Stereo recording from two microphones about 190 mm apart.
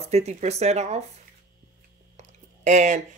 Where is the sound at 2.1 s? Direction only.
40° right (ahead or behind).